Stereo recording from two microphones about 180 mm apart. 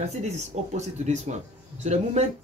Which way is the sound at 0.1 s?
40° right (ahead or behind).